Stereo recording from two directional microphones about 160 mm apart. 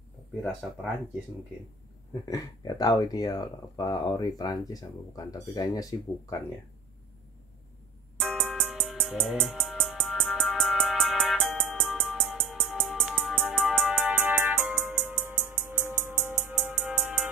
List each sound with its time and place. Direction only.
2.2 s speech: 25° left (ahead or behind)
8.2 s music: centre (ahead or behind)